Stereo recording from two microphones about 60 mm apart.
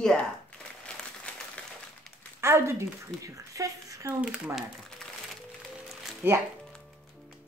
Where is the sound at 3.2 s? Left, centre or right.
Right.